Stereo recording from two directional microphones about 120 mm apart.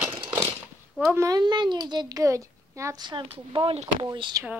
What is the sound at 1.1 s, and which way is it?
Speech, 25° right (ahead or behind).